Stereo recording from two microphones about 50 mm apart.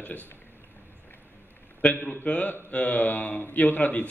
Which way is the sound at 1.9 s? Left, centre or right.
Left.